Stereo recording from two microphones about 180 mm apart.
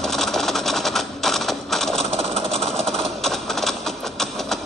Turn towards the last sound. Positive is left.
turn(degrees=0)  # may be behind; listen again after turning